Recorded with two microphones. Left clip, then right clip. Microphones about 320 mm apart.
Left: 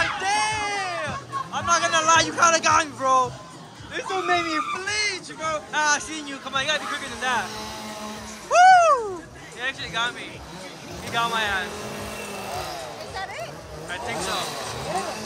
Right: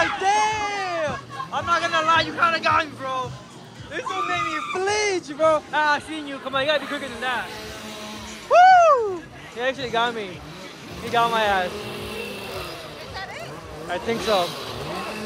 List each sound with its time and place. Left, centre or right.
0.0 s music: centre
4.1 s speech: centre
4.7 s speech: centre
8.5 s a sound: centre
9.6 s speech: centre
13.1 s a sound: centre
13.8 s speech: centre